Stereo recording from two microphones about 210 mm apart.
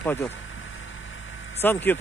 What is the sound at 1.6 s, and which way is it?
Speech, 10° left (ahead or behind).